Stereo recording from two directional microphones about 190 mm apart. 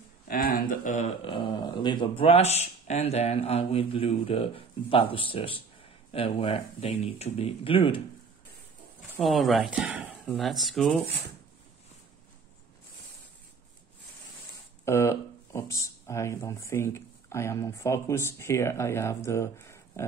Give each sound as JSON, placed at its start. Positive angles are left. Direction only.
{"t": 0.3, "sound": "speech", "side_deg": 50}
{"t": 9.2, "sound": "speech", "side_deg": 0}
{"t": 14.9, "sound": "speech", "side_deg": 15}